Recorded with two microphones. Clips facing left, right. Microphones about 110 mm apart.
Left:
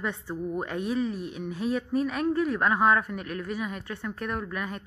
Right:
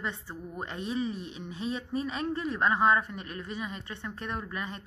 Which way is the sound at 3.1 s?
70° left (ahead or behind).